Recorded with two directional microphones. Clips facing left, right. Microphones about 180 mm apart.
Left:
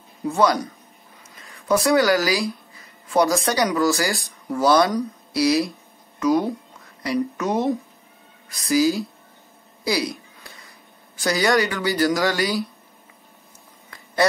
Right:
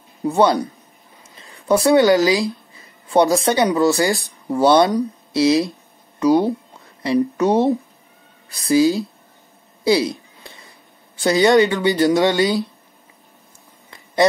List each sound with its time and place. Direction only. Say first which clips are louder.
0.2 s a woman's voice: right 4 dB; 30° right (ahead or behind)
9.8 s a sound: right 7 dB; 25° right (ahead or behind)
11.1 s speech: right 6 dB; 25° right (ahead or behind)